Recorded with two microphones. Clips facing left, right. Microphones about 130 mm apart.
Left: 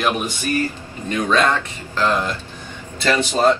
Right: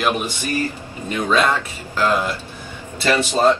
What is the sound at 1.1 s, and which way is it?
Speech, 10° right (ahead or behind).